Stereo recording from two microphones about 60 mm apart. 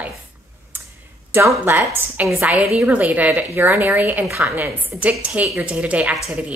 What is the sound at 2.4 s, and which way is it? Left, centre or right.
A woman's voice, right.